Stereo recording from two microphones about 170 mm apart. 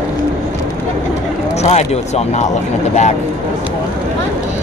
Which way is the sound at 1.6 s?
40° left (ahead or behind).